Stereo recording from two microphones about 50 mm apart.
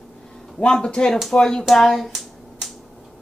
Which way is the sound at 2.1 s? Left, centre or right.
Centre.